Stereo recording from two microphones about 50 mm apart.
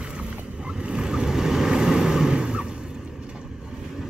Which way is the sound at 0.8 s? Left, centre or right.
Centre.